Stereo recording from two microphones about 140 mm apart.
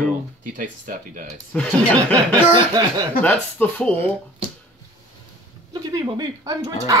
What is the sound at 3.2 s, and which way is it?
Speech, 10° left (ahead or behind).